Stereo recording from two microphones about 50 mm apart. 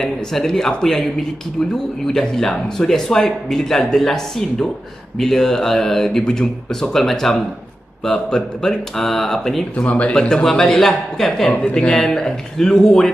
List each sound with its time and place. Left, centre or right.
0.0 s speech: centre
2.0 s speech: centre
9.8 s speech: left; by 11.4 s centre
11.4 s speech: left